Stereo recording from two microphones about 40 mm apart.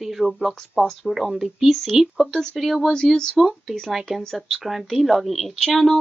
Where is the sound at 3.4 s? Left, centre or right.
Centre.